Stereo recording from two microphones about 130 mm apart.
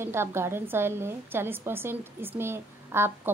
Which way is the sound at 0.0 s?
20° right (ahead or behind).